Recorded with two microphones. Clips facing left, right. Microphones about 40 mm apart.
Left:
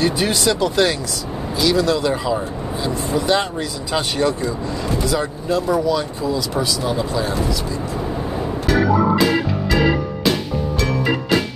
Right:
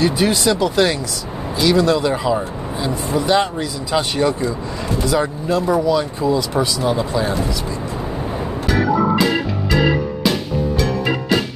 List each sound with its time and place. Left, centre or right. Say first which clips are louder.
0.0 s speech: right 2 dB; centre
6.2 s speech: right 3 dB; centre
10.8 s music: even; centre